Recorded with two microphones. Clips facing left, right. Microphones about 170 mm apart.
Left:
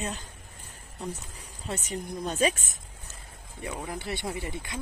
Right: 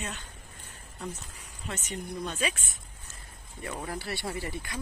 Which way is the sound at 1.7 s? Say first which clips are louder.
Left 3 dB; 35° left (ahead or behind).